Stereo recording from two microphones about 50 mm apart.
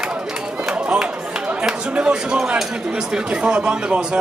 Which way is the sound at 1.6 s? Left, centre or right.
Centre.